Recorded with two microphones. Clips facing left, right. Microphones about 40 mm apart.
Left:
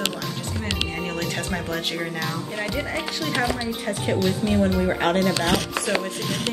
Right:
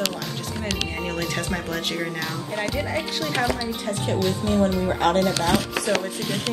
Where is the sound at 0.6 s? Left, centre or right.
Centre.